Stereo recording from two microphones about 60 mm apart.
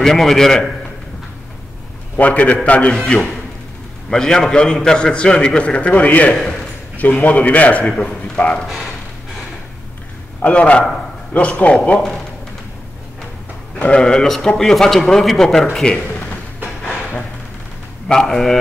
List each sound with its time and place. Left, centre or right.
0.0 s a man's voice: centre
2.1 s a man's voice: left
6.3 s a man's voice: centre
7.0 s a man's voice: left
10.4 s a man's voice: left
13.7 s speech: left
14.0 s a man's voice: centre
16.8 s a sound: left
18.0 s a man's voice: centre